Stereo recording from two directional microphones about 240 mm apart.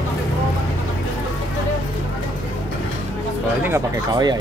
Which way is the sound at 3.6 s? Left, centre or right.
Centre.